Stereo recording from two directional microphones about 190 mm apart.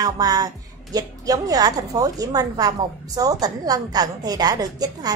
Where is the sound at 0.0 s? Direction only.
20° right (ahead or behind).